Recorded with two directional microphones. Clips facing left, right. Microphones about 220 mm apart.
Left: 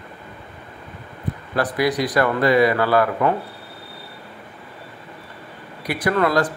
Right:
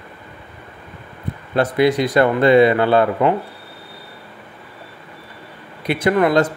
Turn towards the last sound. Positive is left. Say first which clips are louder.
# right 4 dB
turn(degrees=-25)  # may be behind; listen again after turning